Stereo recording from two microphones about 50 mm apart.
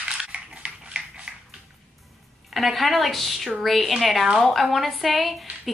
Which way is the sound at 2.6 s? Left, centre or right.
Centre.